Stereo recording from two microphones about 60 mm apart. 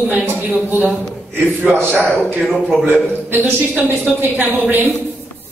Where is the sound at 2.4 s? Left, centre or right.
Centre.